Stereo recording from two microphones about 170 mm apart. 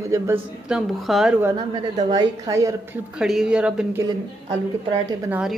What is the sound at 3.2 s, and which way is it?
Speech, 5° right (ahead or behind).